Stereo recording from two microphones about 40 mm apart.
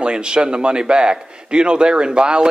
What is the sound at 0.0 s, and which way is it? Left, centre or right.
Speech, right.